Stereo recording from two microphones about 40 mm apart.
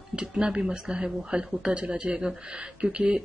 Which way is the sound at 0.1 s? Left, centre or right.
Right.